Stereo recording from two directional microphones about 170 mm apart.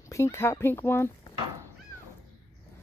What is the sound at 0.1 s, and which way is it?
Speech, 15° left (ahead or behind).